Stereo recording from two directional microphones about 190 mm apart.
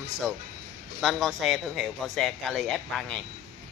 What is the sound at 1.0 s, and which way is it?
Speech, centre (ahead or behind).